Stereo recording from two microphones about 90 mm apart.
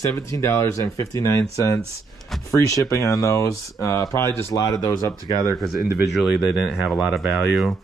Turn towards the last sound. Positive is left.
turn(degrees=0)  # may be behind; listen again after turning